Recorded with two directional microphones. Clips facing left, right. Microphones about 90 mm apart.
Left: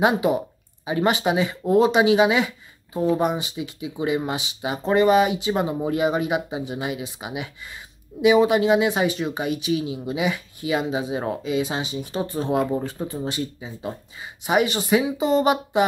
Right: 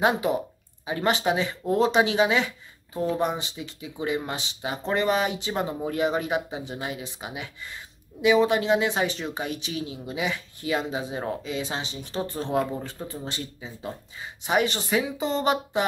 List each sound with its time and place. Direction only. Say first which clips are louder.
0.0 s speech: left 3 dB; 10° left (ahead or behind)